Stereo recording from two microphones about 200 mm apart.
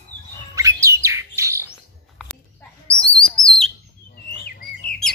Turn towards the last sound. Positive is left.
turn(degrees=50)  # may be behind; listen again after turning